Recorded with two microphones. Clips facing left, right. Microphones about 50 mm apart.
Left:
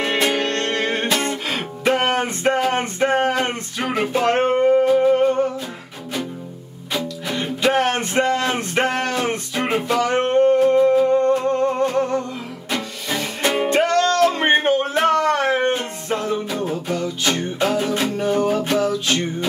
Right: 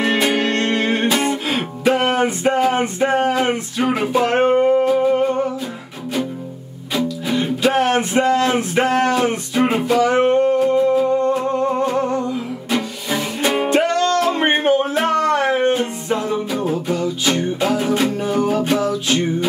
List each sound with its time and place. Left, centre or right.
0.0 s music: centre
2.0 s a sound: centre
3.3 s music: centre
6.9 s music: centre
10.3 s music: centre
11.2 s humming: centre
12.7 s music: centre
14.1 s a sound: centre
14.7 s music: centre